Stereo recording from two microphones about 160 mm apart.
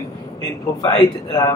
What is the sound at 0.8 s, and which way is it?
Speech, 25° left (ahead or behind).